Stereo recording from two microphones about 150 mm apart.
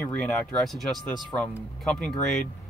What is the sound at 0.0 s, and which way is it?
Speech, 5° left (ahead or behind).